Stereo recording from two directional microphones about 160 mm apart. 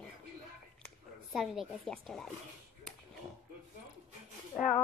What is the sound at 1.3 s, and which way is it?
Speech, centre (ahead or behind).